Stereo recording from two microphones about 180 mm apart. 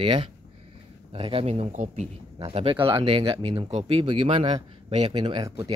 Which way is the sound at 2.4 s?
30° right (ahead or behind).